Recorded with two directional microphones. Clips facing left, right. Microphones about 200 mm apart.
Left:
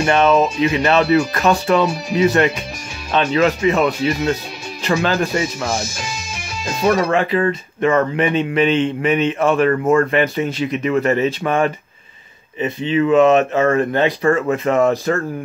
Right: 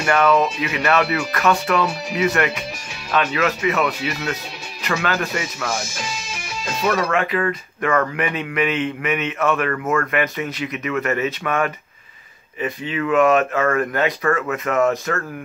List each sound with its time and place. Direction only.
0.0 s speech: 25° left (ahead or behind)
6.8 s speech: 30° left (ahead or behind)